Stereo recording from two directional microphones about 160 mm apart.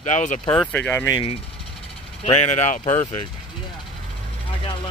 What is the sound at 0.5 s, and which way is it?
Speech, 10° left (ahead or behind).